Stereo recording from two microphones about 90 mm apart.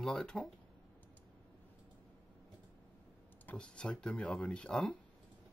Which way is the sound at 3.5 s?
10° left (ahead or behind).